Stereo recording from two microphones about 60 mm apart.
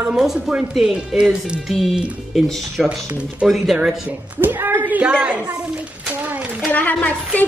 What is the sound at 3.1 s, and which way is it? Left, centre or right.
Speech, centre.